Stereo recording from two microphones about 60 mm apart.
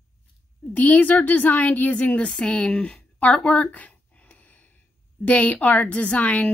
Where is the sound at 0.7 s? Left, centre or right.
Left.